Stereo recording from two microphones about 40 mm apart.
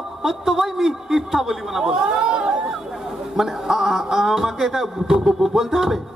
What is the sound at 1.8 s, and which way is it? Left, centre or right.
Speech, centre.